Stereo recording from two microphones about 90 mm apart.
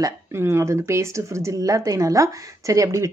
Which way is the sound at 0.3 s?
25° right (ahead or behind).